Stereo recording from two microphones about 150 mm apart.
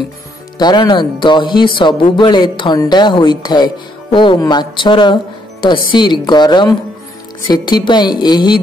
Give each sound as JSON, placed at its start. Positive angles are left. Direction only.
{"t": 0.6, "sound": "a woman's voice", "side_deg": 30}